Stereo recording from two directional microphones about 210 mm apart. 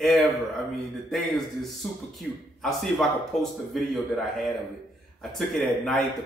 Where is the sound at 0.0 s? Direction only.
Centre (ahead or behind).